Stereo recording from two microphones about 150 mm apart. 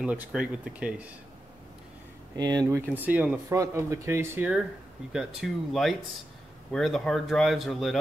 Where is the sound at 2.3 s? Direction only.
30° right (ahead or behind).